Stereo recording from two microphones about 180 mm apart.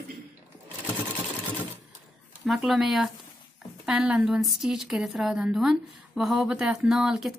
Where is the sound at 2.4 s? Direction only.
Centre (ahead or behind).